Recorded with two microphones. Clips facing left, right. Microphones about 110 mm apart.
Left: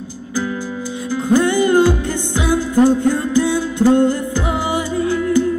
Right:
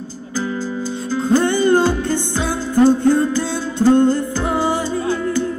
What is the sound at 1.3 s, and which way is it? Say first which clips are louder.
Music: left 1 dB; 15° left (ahead or behind).